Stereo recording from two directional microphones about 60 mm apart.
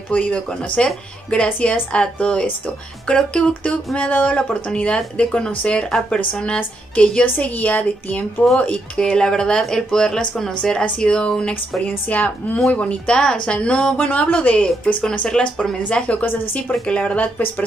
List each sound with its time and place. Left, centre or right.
0.1 s speech: centre
5.9 s speech: centre
13.9 s speech: left
16.3 s speech: left
16.8 s speech: left